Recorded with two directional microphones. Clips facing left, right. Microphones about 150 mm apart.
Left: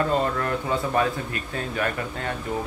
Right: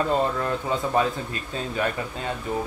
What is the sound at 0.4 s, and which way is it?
Speech, 20° right (ahead or behind).